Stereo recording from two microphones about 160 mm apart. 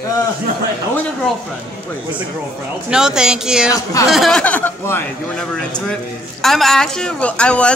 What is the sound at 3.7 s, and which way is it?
Speech, 20° left (ahead or behind).